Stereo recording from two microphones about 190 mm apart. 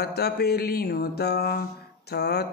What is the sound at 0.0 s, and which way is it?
Speech, 55° left (ahead or behind).